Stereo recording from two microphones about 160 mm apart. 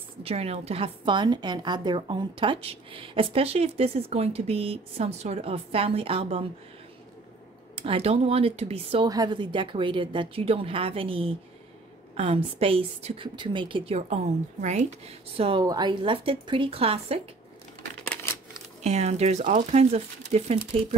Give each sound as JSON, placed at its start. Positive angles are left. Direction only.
{"t": 0.2, "sound": "a woman's voice", "side_deg": -40}
{"t": 7.7, "sound": "a woman's voice", "side_deg": -35}
{"t": 15.6, "sound": "a woman's voice", "side_deg": -25}
{"t": 18.0, "sound": "a sound", "side_deg": 10}
{"t": 18.8, "sound": "speech", "side_deg": -45}